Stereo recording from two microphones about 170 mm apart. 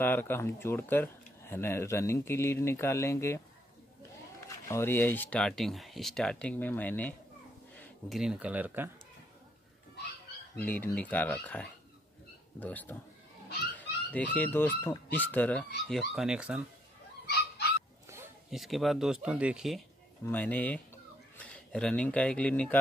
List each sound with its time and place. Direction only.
0.0 s speech: 10° left (ahead or behind)
4.6 s speech: 15° left (ahead or behind)
7.7 s a sound: 10° left (ahead or behind)
8.2 s speech: 5° right (ahead or behind)
10.6 s speech: 10° left (ahead or behind); by 16.6 s 5° right (ahead or behind)
17.3 s dog: 75° left (ahead or behind)
18.5 s speech: centre (ahead or behind)
20.2 s speech: 10° left (ahead or behind)